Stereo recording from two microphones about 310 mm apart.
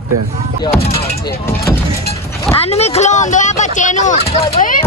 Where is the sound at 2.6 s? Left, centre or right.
Centre.